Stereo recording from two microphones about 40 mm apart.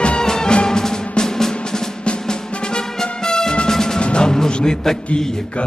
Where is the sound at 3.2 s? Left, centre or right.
Centre.